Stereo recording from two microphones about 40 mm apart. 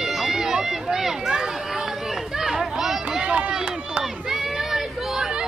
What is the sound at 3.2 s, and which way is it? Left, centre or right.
Run, right.